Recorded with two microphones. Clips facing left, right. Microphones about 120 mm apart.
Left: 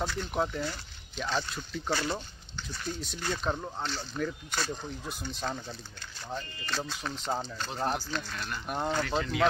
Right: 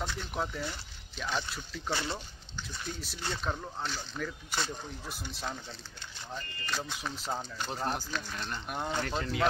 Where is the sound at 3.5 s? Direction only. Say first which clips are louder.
Left 3 dB; 10° left (ahead or behind).